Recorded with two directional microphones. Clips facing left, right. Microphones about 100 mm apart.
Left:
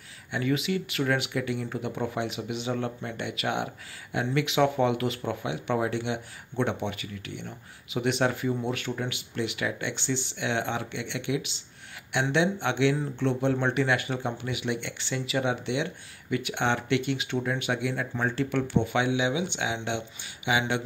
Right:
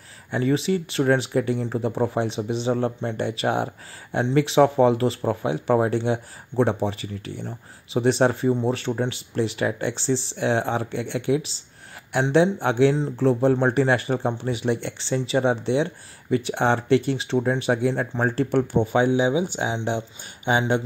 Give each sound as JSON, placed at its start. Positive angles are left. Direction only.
{"t": 0.3, "sound": "speech", "side_deg": -35}